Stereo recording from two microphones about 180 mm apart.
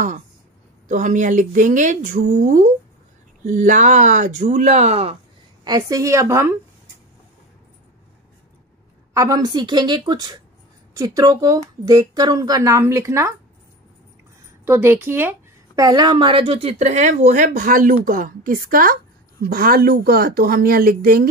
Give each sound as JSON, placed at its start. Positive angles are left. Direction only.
{"t": 0.8, "sound": "speech", "side_deg": -45}
{"t": 5.6, "sound": "a woman's voice", "side_deg": -20}
{"t": 9.1, "sound": "speech", "side_deg": -20}
{"t": 14.6, "sound": "a woman's voice", "side_deg": -15}